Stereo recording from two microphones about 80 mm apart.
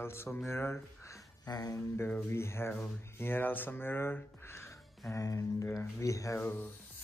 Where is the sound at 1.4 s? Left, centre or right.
Left.